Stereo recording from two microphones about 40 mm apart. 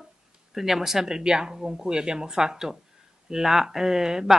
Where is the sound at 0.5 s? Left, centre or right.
Centre.